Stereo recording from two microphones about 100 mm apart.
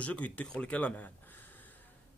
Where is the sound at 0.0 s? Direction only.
15° left (ahead or behind).